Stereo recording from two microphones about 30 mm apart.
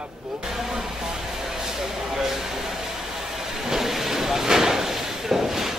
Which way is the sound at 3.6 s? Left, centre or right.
Centre.